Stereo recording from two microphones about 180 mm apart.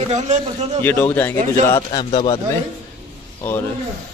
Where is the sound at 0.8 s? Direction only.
10° left (ahead or behind).